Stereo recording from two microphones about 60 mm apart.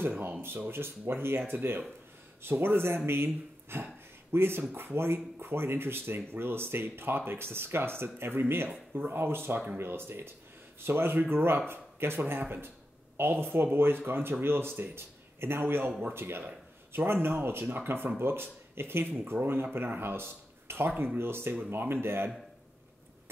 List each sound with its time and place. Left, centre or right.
0.0 s speech: right